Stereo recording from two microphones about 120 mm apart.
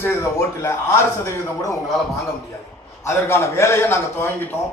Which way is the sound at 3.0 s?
20° left (ahead or behind).